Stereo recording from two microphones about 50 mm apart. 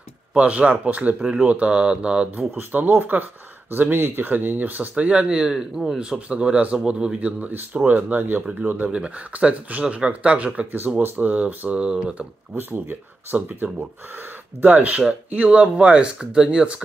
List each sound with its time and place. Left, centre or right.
0.4 s speech: right
1.2 s speech: centre
2.5 s speech: right
8.9 s speech: right
11.0 s speech: right
12.5 s speech: right
15.0 s speech: right